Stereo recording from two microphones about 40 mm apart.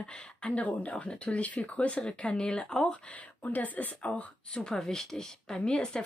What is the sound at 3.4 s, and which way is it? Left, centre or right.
Speech, left.